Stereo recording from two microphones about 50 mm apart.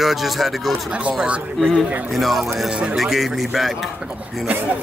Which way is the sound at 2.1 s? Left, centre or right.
Centre.